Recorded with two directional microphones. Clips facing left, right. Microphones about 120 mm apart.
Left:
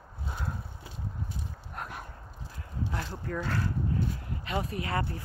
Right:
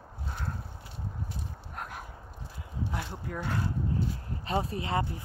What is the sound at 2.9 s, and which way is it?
Speech, 10° right (ahead or behind).